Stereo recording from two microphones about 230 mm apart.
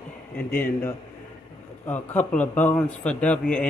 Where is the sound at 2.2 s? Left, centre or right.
Centre.